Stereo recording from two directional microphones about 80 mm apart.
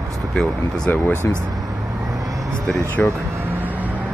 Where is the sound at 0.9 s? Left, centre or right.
Left.